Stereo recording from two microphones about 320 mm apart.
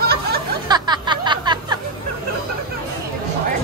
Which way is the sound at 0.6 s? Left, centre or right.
Centre.